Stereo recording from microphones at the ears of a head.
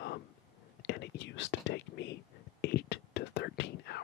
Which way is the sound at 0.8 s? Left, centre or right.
Left.